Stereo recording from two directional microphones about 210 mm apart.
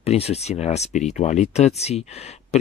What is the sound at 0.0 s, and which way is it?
Speech, 30° left (ahead or behind).